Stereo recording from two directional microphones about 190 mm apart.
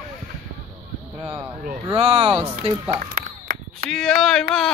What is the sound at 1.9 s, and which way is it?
Speech, 30° right (ahead or behind).